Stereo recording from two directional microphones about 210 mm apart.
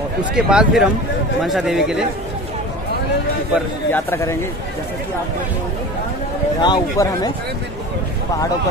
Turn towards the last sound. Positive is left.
turn(degrees=20)  # may be behind; listen again after turning